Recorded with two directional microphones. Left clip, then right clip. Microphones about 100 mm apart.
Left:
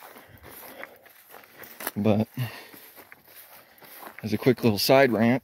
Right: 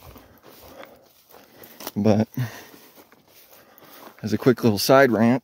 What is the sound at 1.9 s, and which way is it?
Speech, 70° right (ahead or behind).